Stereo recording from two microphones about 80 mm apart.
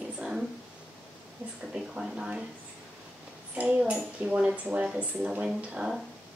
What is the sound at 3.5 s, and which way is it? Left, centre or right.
Speech, centre.